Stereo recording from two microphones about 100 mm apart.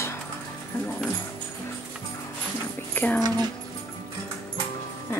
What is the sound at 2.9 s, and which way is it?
Dog, 20° left (ahead or behind).